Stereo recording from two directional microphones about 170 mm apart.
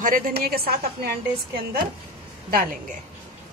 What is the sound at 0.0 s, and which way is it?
A woman's voice, 60° right (ahead or behind).